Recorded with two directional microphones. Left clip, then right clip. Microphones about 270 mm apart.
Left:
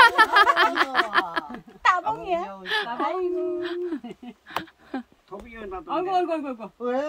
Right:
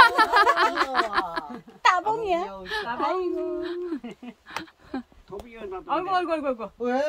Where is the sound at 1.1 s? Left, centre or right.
Centre.